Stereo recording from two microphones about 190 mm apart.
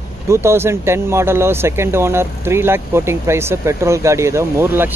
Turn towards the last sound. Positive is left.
turn(degrees=-10)  # may be behind; listen again after turning